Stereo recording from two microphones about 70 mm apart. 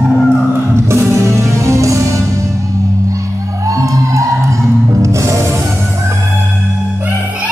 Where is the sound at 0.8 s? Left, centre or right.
Right.